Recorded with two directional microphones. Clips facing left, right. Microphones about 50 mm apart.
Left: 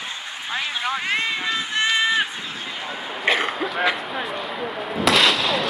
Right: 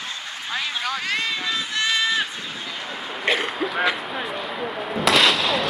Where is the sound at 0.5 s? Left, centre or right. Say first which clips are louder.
Left 1 dB; left.